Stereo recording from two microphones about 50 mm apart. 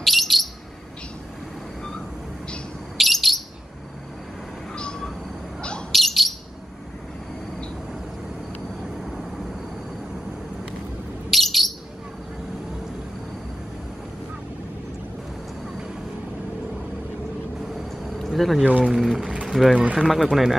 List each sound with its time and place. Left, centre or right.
0.0 s bird: centre
3.0 s bird: centre
4.7 s a sound: centre
5.6 s owl: centre
5.9 s bird: centre
9.0 s vehicle: centre
11.2 s bird: centre
17.6 s vehicle: centre
18.9 s speech: centre
19.4 s a sound: centre
19.8 s speech: right
20.1 s speech: centre